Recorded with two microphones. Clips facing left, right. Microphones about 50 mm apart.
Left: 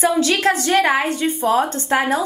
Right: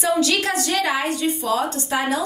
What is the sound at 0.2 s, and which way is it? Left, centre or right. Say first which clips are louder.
A woman's voice: left 3 dB; left.